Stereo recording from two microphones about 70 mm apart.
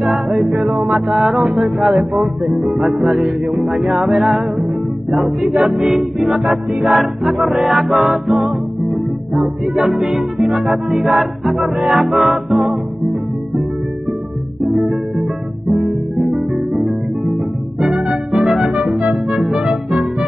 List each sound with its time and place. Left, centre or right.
0.1 s music: centre
9.8 s music: centre
14.6 s music: centre